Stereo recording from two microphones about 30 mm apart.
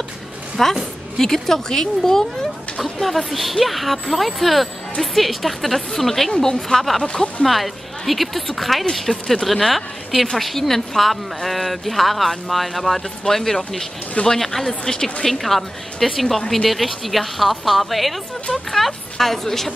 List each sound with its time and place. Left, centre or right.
0.6 s speech: centre
2.8 s a woman's voice: centre
6.4 s a woman's voice: centre
7.4 s a woman's voice: centre